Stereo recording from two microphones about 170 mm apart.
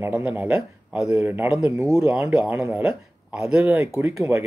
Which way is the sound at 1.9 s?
5° right (ahead or behind).